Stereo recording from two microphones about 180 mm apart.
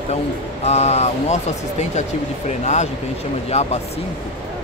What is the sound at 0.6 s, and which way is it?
Speech, 35° left (ahead or behind).